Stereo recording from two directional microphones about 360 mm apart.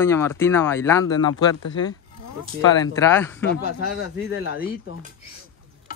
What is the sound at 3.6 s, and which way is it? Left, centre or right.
Speech, left.